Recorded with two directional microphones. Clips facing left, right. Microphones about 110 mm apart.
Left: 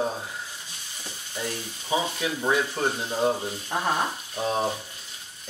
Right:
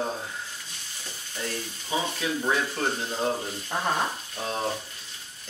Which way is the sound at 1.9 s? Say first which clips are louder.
Left 2 dB; 10° left (ahead or behind).